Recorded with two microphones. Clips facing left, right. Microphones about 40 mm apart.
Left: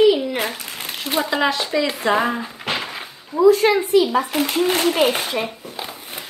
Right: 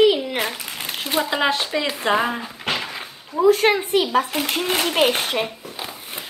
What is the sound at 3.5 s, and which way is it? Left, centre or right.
A child's voice, right.